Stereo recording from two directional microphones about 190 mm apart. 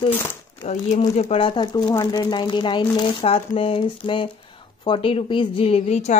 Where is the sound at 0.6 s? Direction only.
40° left (ahead or behind).